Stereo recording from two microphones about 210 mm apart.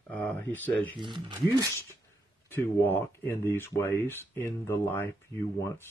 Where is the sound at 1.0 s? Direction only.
20° right (ahead or behind).